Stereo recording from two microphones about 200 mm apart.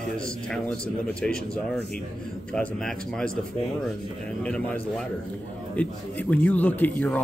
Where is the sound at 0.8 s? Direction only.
5° left (ahead or behind).